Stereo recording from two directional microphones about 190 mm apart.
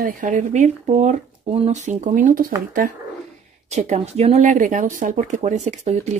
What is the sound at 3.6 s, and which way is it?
Speech, 40° right (ahead or behind).